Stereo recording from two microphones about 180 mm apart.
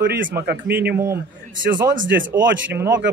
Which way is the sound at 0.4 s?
65° right (ahead or behind).